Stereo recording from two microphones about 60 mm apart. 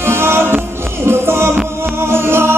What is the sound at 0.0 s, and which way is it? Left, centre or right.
Music, right.